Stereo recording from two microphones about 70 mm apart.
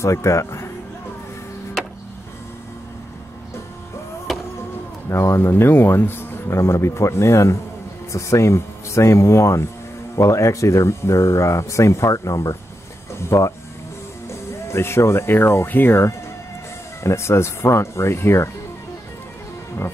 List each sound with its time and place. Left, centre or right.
0.0 s speech: left
4.3 s music: centre
5.1 s speech: left
14.7 s speech: left